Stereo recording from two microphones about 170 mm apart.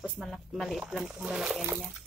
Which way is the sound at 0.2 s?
Centre (ahead or behind).